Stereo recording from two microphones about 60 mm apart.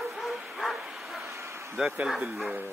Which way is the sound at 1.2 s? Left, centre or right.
Right.